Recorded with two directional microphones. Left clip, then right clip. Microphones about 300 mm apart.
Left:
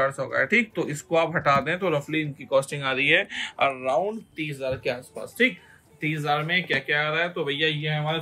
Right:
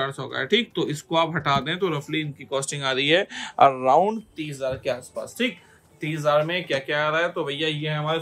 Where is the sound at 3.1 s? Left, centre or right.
Centre.